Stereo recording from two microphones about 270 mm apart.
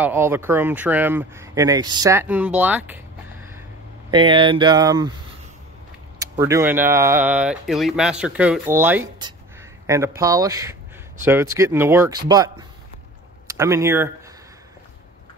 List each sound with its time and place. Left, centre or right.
0.0 s speech: centre
6.1 s speech: centre